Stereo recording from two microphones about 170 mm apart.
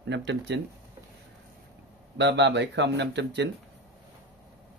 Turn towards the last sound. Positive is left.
turn(degrees=-90)